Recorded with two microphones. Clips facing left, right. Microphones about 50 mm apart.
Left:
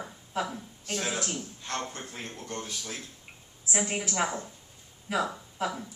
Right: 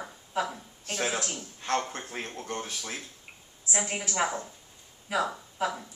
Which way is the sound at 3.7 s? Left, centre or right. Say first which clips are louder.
Even; centre.